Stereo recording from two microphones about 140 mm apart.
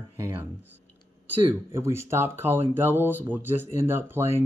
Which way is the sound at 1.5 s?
20° right (ahead or behind).